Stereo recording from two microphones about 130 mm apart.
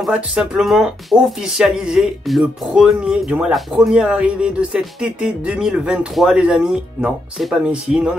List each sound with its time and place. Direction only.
0.0 s speech: 5° right (ahead or behind)